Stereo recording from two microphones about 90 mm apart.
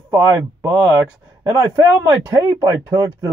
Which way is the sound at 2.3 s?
40° right (ahead or behind).